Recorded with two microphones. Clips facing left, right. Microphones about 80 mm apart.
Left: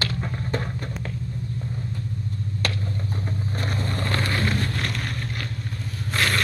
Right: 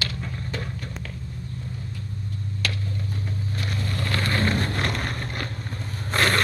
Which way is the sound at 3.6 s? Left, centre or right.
Left.